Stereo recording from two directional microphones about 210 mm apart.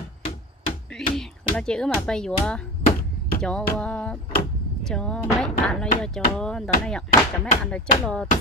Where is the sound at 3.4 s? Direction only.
5° left (ahead or behind).